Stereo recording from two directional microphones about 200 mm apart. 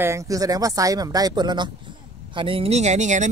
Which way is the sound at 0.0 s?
15° right (ahead or behind).